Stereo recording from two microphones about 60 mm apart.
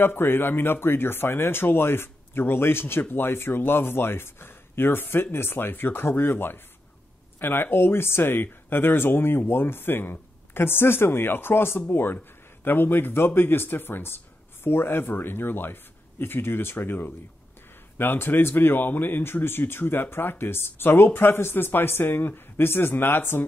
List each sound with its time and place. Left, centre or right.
0.0 s speech: left